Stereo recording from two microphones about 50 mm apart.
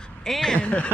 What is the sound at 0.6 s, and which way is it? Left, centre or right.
Speech, left.